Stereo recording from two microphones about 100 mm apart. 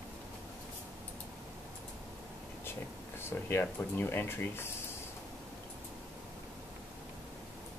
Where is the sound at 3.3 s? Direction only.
20° left (ahead or behind).